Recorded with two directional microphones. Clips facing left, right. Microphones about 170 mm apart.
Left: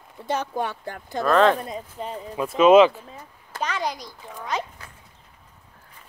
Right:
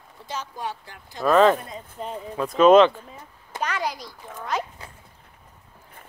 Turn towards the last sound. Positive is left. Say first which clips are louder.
# right 1 dB
turn(degrees=-5)  # may be behind; listen again after turning